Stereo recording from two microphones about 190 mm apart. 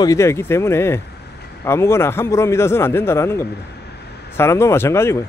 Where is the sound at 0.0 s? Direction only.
15° left (ahead or behind).